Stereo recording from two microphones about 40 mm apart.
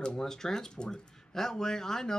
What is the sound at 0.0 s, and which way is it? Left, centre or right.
Speech, centre.